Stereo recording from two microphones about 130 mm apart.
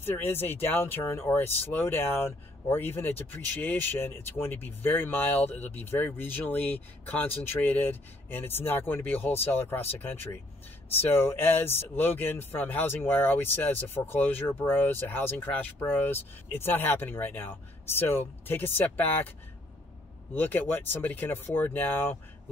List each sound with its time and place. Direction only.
0.0 s speech: 15° left (ahead or behind)
20.3 s speech: 15° left (ahead or behind)